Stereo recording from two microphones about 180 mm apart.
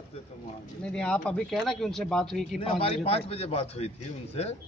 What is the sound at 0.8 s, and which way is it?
Speech, 5° left (ahead or behind).